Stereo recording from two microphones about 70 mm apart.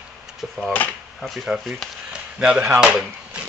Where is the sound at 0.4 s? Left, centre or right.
Centre.